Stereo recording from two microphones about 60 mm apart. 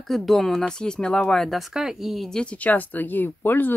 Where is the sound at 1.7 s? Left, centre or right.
Centre.